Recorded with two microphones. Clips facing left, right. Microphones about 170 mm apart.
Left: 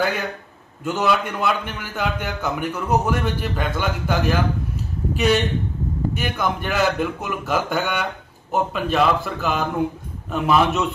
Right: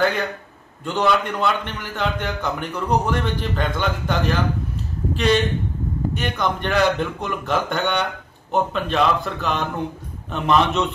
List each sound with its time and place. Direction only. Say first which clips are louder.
0.8 s a man's voice: right 1 dB; 5° left (ahead or behind)